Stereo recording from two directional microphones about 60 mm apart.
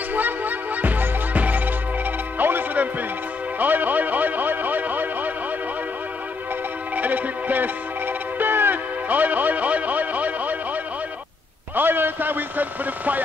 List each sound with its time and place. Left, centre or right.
0.1 s music: right
7.0 s music: right
11.7 s a sound: right